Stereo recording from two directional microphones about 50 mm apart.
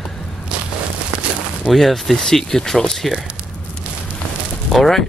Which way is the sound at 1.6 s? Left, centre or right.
Centre.